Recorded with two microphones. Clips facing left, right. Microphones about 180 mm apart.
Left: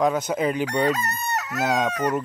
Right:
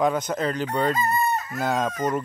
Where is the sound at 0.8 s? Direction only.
80° left.